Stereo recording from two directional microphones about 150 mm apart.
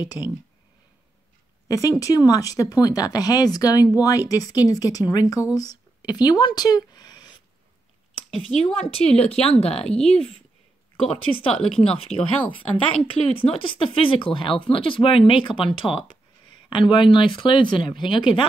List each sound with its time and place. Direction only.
0.0 s speech: 25° left (ahead or behind)
1.7 s speech: 25° left (ahead or behind)
8.5 s speech: 5° left (ahead or behind)
9.1 s speech: 45° left (ahead or behind)
9.8 s speech: 5° left (ahead or behind)
11.1 s speech: 40° left (ahead or behind)
11.5 s speech: 5° left (ahead or behind)
11.8 s speech: 40° left (ahead or behind)